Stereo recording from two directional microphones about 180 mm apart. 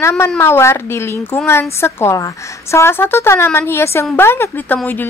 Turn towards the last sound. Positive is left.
turn(degrees=10)  # may be behind; listen again after turning